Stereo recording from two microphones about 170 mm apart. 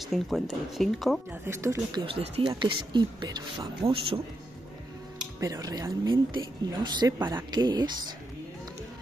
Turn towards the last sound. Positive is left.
turn(degrees=-25)  # may be behind; listen again after turning